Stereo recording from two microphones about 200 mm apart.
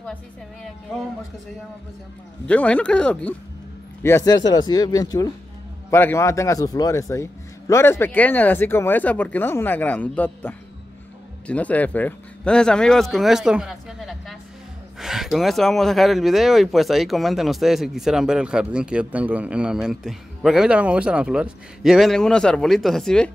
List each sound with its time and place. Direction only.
2.4 s a man's voice: 5° left (ahead or behind)